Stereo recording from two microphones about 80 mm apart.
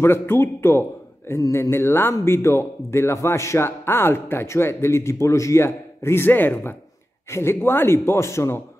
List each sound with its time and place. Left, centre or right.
0.0 s speech: left